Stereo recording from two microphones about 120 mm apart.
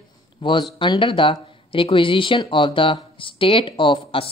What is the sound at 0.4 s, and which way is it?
Speech, 45° left (ahead or behind).